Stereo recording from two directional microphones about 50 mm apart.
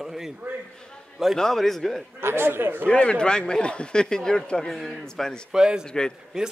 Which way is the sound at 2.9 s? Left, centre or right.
Centre.